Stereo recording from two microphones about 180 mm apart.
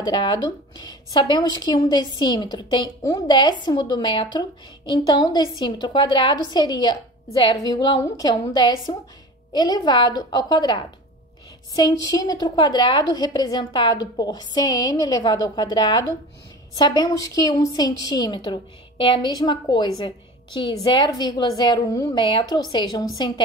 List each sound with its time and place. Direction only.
0.0 s a woman's voice: 25° left (ahead or behind)